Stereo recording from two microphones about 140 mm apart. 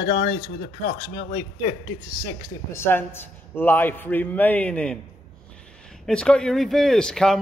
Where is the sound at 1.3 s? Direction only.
30° left (ahead or behind); by 4.9 s 5° left (ahead or behind).